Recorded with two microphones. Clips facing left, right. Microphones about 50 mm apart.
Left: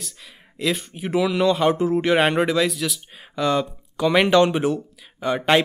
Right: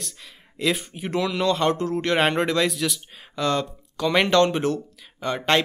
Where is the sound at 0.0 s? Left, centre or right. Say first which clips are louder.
Even; centre.